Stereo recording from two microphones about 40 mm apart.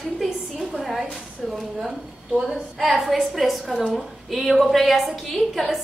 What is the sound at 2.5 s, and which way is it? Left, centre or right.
A woman's voice, centre.